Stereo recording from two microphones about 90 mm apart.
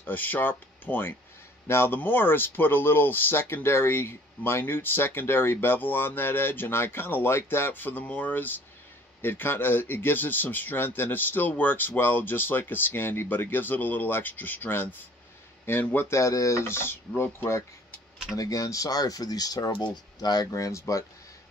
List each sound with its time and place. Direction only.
0.0 s speech: 20° left (ahead or behind)
16.1 s speech: 35° left (ahead or behind)
18.3 s speech: 40° left (ahead or behind)